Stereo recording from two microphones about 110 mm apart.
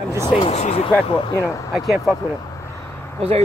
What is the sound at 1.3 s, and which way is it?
Speech, 25° left (ahead or behind).